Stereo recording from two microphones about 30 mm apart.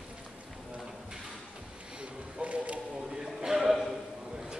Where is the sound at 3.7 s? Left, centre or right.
Centre.